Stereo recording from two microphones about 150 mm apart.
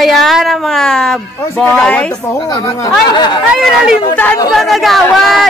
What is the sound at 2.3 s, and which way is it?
Speech, 25° left (ahead or behind).